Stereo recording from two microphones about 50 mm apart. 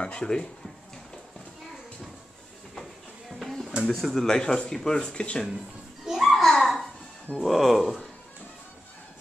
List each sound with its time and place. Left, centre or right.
0.0 s speech: centre
2.7 s a sound: centre
3.8 s speech: centre; by 5.4 s left
6.0 s babbling: centre
7.4 s speech: centre